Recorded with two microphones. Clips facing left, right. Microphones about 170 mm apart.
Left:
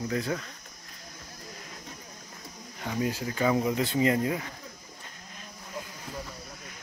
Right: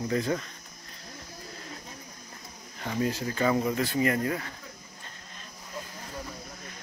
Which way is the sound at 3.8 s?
20° left (ahead or behind).